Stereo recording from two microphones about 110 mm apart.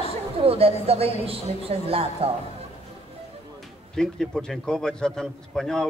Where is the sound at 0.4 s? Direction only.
60° right (ahead or behind).